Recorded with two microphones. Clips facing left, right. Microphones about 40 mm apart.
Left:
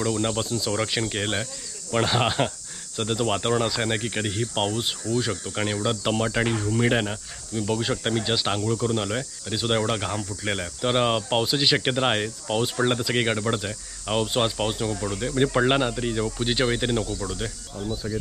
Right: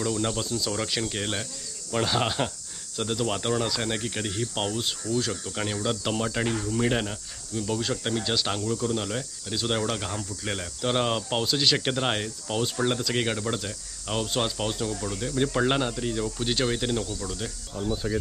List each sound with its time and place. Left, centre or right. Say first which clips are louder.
0.0 s speech: left 3 dB; centre
17.8 s speech: right 1 dB; centre